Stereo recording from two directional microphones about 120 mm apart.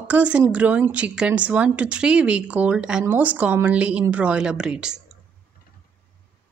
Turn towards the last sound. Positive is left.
turn(degrees=-5)  # may be behind; listen again after turning